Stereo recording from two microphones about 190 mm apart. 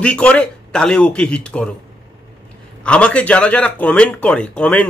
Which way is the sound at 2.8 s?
5° left (ahead or behind).